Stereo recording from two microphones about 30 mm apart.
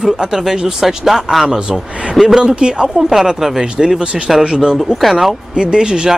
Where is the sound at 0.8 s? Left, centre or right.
Centre.